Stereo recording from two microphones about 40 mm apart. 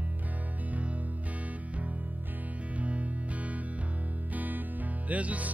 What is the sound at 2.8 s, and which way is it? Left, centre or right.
Music, right.